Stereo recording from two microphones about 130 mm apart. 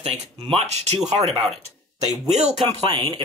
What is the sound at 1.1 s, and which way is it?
Speech, 45° right (ahead or behind).